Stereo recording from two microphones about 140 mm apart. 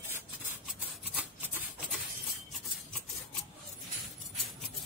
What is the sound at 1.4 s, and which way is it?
Rub, 10° right (ahead or behind).